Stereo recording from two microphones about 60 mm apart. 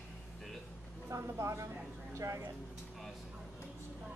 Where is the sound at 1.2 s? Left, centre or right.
Right.